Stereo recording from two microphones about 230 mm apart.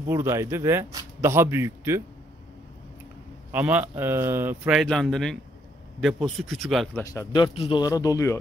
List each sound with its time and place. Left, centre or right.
0.1 s a man's voice: centre
3.5 s a man's voice: centre
7.0 s speech: centre